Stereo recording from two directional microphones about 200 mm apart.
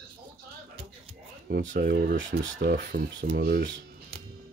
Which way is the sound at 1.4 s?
60° right (ahead or behind).